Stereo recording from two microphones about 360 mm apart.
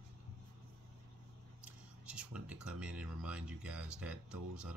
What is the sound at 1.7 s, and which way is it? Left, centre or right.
Speech, centre.